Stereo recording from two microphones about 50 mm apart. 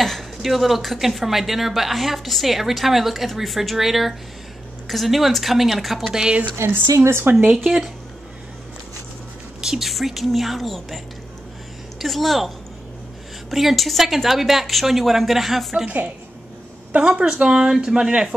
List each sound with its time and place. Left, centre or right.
0.0 s a sound: centre
0.4 s a woman's voice: centre
6.1 s speech: centre
6.7 s speech: right
7.5 s speech: centre
9.6 s a woman's voice: centre
12.0 s a woman's voice: centre
16.9 s speech: right
17.3 s speech: centre